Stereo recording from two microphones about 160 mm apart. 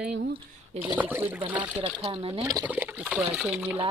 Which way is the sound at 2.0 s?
35° right (ahead or behind).